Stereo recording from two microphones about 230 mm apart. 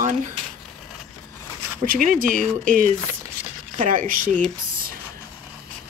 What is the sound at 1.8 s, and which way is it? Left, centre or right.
Speech, right.